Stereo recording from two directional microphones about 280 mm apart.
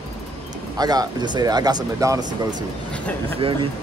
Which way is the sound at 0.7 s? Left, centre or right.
Centre.